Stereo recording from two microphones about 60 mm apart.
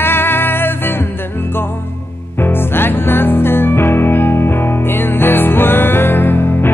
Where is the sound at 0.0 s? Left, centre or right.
Left.